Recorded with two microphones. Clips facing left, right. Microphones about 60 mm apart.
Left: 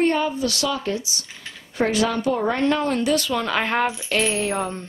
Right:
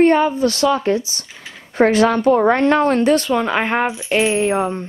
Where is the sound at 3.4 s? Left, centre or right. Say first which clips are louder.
Right 4 dB; right.